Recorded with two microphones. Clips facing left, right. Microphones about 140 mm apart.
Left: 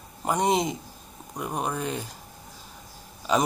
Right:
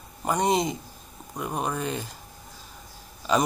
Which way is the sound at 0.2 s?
5° left (ahead or behind).